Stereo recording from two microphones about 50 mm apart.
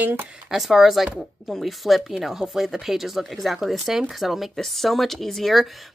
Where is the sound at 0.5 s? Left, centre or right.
Centre.